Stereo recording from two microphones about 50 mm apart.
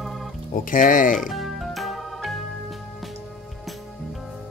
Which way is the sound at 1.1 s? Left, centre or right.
Centre.